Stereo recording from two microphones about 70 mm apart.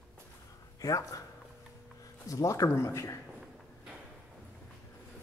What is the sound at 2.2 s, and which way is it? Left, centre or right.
Speech, left.